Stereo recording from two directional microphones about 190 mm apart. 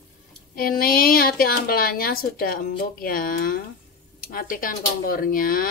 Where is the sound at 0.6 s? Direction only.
50° left (ahead or behind).